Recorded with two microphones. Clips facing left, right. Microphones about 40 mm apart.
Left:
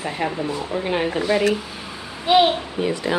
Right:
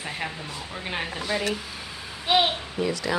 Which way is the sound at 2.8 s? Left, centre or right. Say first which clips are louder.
Left 3 dB; left.